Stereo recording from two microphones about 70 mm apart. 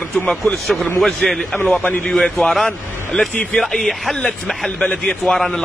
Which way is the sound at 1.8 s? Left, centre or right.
Left.